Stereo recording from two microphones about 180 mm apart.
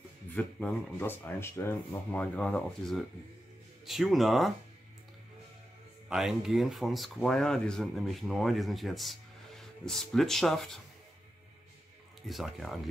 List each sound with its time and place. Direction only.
0.3 s speech: 5° left (ahead or behind)
6.0 s speech: centre (ahead or behind)
12.2 s speech: centre (ahead or behind)